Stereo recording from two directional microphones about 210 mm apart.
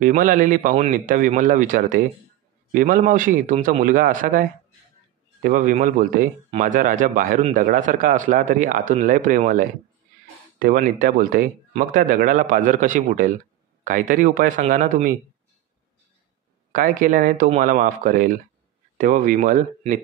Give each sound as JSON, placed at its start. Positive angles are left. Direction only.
{"t": 0.0, "sound": "speech", "side_deg": -40}
{"t": 16.7, "sound": "speech", "side_deg": -40}